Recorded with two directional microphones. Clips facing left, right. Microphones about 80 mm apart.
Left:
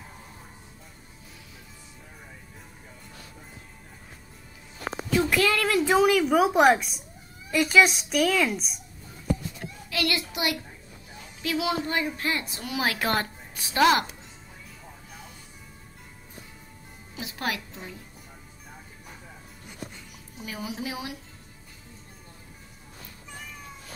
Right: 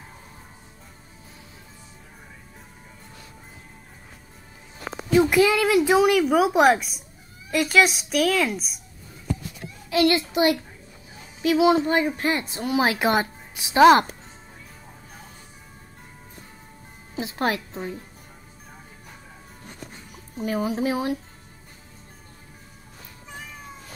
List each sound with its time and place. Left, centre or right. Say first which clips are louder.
5.1 s a woman's voice: right 6 dB; centre
9.8 s a child's voice: right 9 dB; right
17.1 s a woman's voice: right 6 dB; right
19.9 s speech: right 3 dB; right